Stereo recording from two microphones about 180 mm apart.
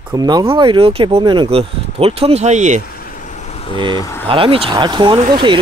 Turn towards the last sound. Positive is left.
turn(degrees=-25)  # may be behind; listen again after turning